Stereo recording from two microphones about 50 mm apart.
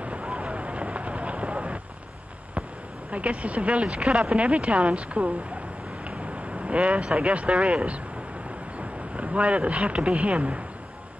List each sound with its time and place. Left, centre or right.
0.0 s vehicle: right
3.1 s speech: right